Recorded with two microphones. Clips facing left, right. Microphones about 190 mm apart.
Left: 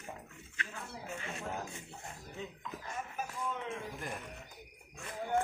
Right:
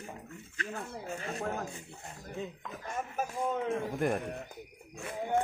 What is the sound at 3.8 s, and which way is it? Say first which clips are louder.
Speech: right 11 dB; 60° right (ahead or behind).